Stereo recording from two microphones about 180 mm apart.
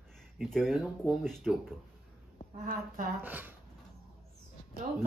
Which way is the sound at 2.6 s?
45° right (ahead or behind).